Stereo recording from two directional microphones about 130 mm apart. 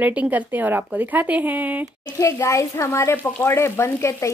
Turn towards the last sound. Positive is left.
turn(degrees=20)  # may be behind; listen again after turning